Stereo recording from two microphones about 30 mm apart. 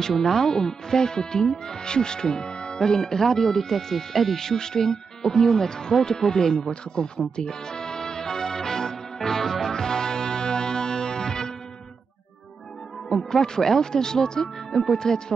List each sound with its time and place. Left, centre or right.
0.1 s speech: centre
4.4 s speech: centre
7.3 s music: left
13.1 s speech: centre